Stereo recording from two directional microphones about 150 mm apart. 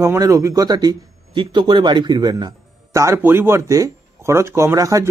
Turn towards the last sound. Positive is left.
turn(degrees=-20)  # may be behind; listen again after turning